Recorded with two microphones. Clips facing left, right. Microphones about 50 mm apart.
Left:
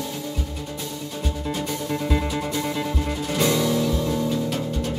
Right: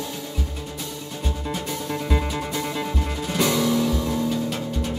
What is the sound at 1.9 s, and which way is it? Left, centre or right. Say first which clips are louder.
Music: left 1 dB; centre.